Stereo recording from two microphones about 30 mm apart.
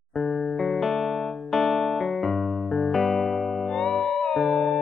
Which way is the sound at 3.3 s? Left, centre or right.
Centre.